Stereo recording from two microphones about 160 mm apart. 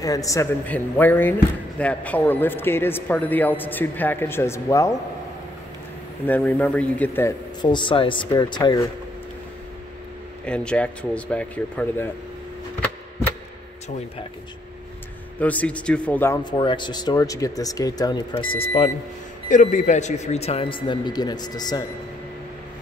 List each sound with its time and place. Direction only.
0.0 s a man's voice: 20° left (ahead or behind)
6.2 s a man's voice: 10° left (ahead or behind)
7.6 s speech: 30° left (ahead or behind)
10.4 s a man's voice: 5° left (ahead or behind)
15.3 s a man's voice: 10° left (ahead or behind)
16.4 s speech: 30° left (ahead or behind)
19.5 s speech: 50° left (ahead or behind); by 21.8 s 25° left (ahead or behind)